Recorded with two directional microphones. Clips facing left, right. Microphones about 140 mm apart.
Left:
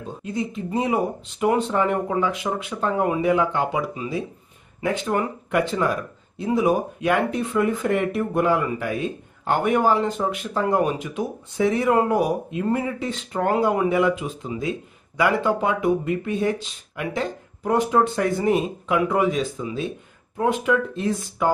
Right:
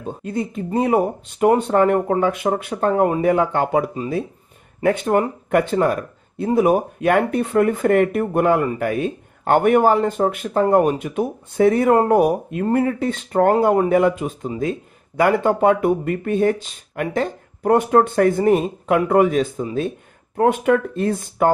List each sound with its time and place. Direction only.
0.2 s speech: 50° right (ahead or behind)